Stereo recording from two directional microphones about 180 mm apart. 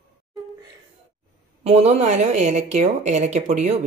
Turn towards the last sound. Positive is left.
turn(degrees=-40)  # may be behind; listen again after turning